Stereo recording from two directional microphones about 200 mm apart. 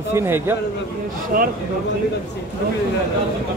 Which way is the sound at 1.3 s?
45° right (ahead or behind).